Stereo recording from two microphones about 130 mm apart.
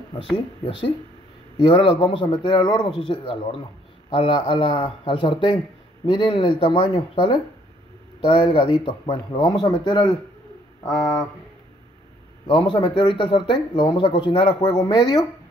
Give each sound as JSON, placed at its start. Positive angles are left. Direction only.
{"t": 0.7, "sound": "speech", "side_deg": 40}
{"t": 12.4, "sound": "speech", "side_deg": 40}